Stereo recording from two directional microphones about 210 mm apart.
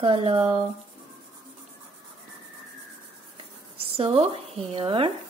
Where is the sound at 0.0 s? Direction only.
30° right (ahead or behind).